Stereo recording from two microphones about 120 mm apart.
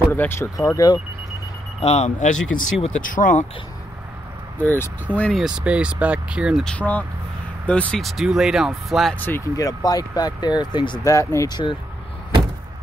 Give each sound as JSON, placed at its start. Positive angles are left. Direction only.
{"t": 0.1, "sound": "speech", "side_deg": 15}
{"t": 0.6, "sound": "speech", "side_deg": 30}
{"t": 1.8, "sound": "speech", "side_deg": 65}
{"t": 4.6, "sound": "speech", "side_deg": 15}
{"t": 5.3, "sound": "speech", "side_deg": -5}
{"t": 6.6, "sound": "speech", "side_deg": 10}
{"t": 9.6, "sound": "speech", "side_deg": 30}
{"t": 11.1, "sound": "speech", "side_deg": 25}